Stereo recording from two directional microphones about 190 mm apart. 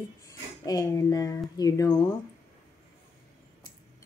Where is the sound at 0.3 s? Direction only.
20° left (ahead or behind).